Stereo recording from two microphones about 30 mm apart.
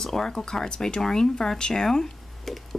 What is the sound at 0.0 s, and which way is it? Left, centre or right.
Speech, centre.